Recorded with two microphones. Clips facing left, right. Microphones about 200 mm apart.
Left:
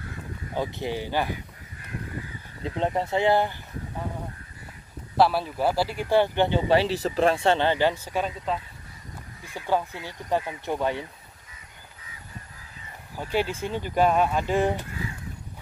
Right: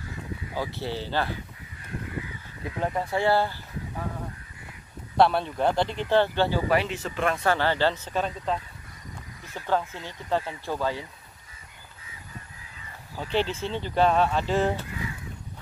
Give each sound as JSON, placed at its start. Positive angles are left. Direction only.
{"t": 0.6, "sound": "speech", "side_deg": 15}
{"t": 2.6, "sound": "speech", "side_deg": 25}
{"t": 5.1, "sound": "speech", "side_deg": 5}
{"t": 13.2, "sound": "speech", "side_deg": 10}